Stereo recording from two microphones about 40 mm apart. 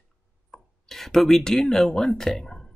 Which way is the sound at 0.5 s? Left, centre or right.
Centre.